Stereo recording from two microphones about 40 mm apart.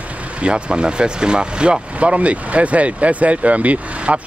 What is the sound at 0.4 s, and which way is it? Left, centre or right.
Speech, right.